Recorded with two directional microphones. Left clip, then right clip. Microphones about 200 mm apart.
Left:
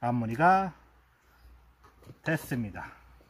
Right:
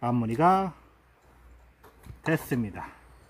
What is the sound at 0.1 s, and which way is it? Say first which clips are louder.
Speech: right 1 dB; 10° left (ahead or behind).